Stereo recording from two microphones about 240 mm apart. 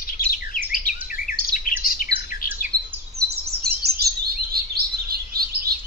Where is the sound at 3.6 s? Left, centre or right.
Right.